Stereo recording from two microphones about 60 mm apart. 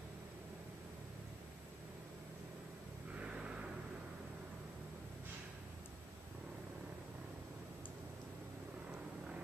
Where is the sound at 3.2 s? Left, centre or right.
Centre.